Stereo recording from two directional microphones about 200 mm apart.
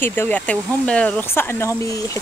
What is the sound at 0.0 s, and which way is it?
Speech, 10° left (ahead or behind).